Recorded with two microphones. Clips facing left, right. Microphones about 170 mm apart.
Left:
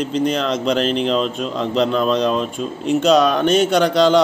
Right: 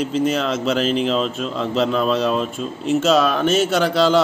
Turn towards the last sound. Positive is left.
turn(degrees=-5)  # may be behind; listen again after turning